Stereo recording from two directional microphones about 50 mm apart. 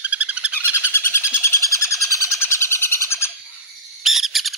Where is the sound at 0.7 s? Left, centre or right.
Left.